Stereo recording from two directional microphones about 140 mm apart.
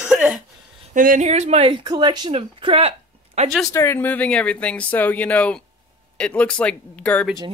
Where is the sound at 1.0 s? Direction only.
70° right (ahead or behind); by 1.7 s 50° right (ahead or behind).